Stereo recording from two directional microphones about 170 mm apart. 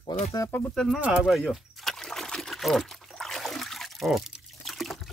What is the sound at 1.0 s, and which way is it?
Trickle, 5° right (ahead or behind).